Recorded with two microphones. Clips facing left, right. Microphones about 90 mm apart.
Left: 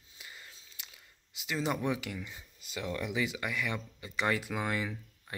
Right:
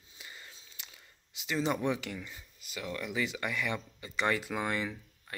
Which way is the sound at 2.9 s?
15° left (ahead or behind).